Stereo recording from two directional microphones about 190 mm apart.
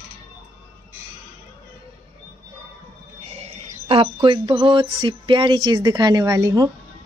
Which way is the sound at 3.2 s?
35° right (ahead or behind).